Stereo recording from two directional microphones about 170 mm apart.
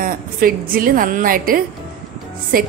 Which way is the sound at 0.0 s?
55° right (ahead or behind).